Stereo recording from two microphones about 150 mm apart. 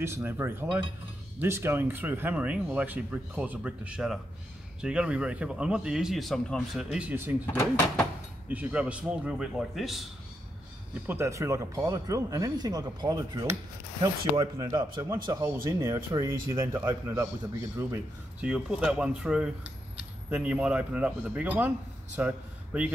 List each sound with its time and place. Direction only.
0.0 s a man's voice: 15° right (ahead or behind)
8.5 s speech: 10° right (ahead or behind)
11.1 s speech: 20° right (ahead or behind)
15.4 s speech: 15° right (ahead or behind)